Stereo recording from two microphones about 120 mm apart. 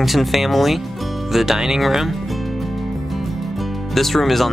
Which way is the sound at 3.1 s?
Centre (ahead or behind).